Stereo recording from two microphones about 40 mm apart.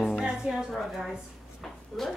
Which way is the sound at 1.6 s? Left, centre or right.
Centre.